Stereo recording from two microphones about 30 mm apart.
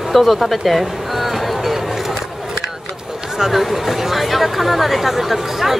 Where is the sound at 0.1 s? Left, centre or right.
Centre.